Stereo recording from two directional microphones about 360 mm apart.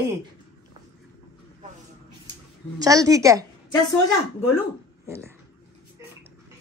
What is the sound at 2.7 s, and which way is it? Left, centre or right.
Speech, centre.